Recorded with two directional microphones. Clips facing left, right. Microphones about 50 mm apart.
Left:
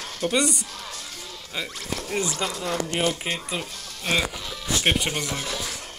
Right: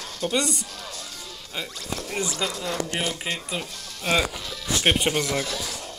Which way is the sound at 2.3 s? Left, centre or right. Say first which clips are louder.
Left 1 dB; left.